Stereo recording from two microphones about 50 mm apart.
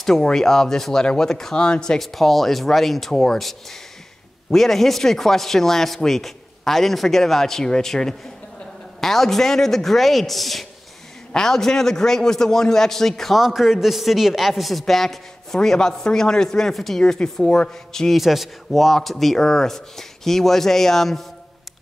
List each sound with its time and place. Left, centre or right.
0.2 s a man's voice: centre
2.0 s a man's voice: centre
17.0 s a man's voice: centre
18.1 s a man's voice: centre